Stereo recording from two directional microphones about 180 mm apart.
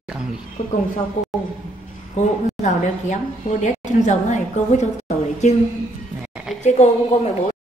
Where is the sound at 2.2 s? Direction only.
40° left (ahead or behind).